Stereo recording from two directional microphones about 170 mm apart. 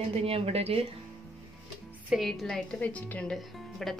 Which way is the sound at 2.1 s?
Centre (ahead or behind).